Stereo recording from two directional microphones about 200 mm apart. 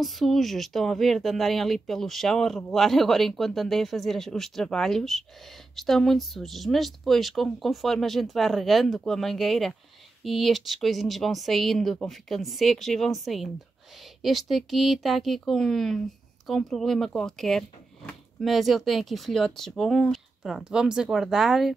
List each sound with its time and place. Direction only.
0.0 s speech: centre (ahead or behind)